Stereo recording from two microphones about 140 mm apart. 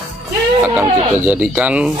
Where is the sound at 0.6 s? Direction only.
10° right (ahead or behind).